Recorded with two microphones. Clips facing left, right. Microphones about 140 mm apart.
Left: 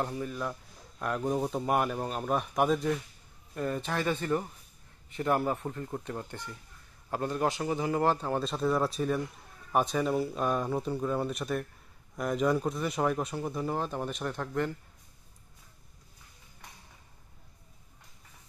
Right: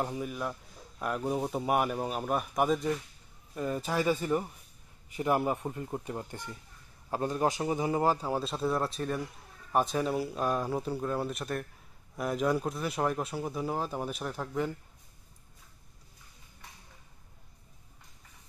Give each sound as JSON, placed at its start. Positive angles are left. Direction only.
{"t": 0.0, "sound": "a man's voice", "side_deg": -10}
{"t": 7.6, "sound": "a man's voice", "side_deg": -20}